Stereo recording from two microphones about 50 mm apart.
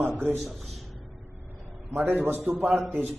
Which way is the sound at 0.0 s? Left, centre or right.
Right.